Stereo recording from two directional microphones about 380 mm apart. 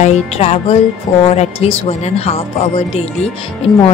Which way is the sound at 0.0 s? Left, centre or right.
Centre.